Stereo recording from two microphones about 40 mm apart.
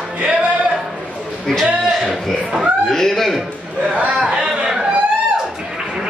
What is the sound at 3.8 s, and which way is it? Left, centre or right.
Speech, right.